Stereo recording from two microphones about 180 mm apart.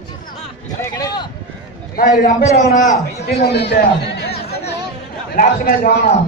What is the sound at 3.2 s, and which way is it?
Speech, 70° left (ahead or behind).